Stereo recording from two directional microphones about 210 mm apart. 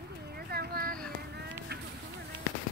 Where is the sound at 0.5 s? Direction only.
50° right (ahead or behind).